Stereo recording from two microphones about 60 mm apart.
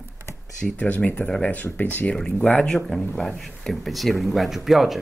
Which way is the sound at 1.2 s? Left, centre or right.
Centre.